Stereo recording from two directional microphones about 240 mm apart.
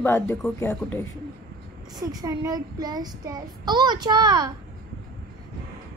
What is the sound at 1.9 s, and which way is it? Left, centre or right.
Child singing, centre.